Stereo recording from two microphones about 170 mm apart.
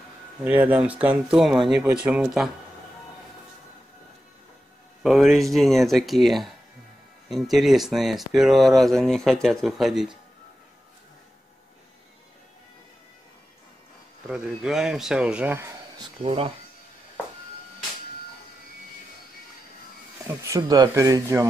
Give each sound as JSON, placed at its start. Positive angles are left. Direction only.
{"t": 0.4, "sound": "speech", "side_deg": -10}
{"t": 5.0, "sound": "speech", "side_deg": 0}
{"t": 14.2, "sound": "speech", "side_deg": -5}
{"t": 16.2, "sound": "speech", "side_deg": -30}
{"t": 20.4, "sound": "speech", "side_deg": -20}